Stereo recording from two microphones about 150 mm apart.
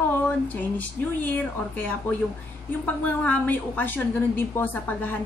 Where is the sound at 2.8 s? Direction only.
10° left (ahead or behind).